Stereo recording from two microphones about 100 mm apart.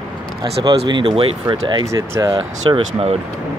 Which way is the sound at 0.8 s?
55° right (ahead or behind).